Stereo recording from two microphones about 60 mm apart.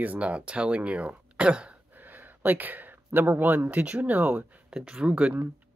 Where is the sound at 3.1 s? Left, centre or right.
Right.